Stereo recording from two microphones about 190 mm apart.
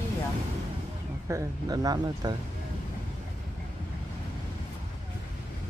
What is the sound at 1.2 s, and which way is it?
Speech, 15° right (ahead or behind).